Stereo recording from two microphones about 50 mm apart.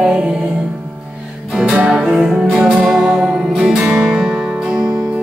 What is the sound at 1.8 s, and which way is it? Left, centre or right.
Music, centre.